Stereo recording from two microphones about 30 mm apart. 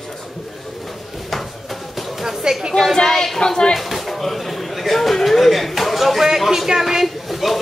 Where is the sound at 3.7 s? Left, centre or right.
Centre.